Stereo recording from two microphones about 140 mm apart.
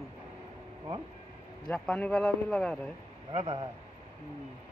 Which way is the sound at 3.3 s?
40° right (ahead or behind).